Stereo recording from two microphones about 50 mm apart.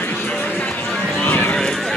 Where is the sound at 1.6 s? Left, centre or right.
Centre.